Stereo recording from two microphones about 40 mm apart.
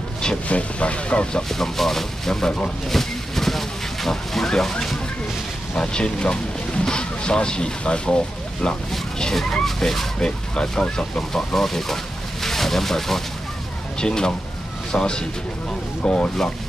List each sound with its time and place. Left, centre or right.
0.5 s speech: left
1.5 s speech: centre
2.9 s a sound: centre
5.8 s speech: left
9.3 s speech: centre
10.2 s speech: left
13.9 s speech: centre